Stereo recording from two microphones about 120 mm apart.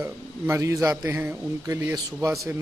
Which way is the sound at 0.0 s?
25° right (ahead or behind).